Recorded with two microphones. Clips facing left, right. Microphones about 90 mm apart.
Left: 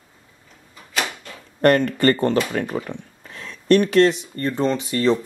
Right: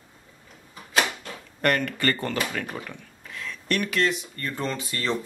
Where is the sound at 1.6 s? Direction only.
35° left (ahead or behind).